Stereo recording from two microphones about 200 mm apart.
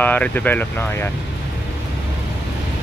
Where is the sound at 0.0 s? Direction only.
10° left (ahead or behind).